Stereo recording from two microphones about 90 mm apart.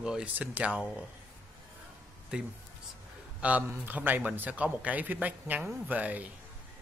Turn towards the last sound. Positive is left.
turn(degrees=-15)  # may be behind; listen again after turning